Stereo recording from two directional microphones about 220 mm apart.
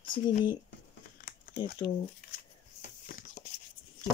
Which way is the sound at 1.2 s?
40° left (ahead or behind).